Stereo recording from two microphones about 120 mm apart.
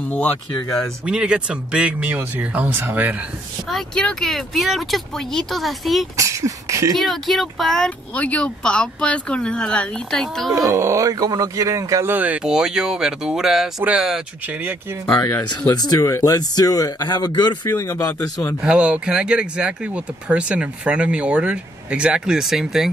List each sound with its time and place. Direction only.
0.1 s speech: 15° left (ahead or behind)
1.0 s speech: 5° right (ahead or behind)
3.6 s speech: 5° left (ahead or behind)
6.1 s speech: 25° right (ahead or behind)
7.0 s speech: centre (ahead or behind)
10.7 s speech: 25° right (ahead or behind)
15.8 s speech: 30° left (ahead or behind)
18.6 s speech: 10° right (ahead or behind)